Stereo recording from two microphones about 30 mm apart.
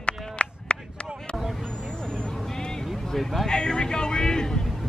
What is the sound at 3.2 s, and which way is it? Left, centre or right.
Speech, centre.